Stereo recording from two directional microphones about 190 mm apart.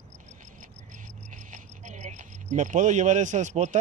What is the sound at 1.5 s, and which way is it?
Cricket, 40° right (ahead or behind).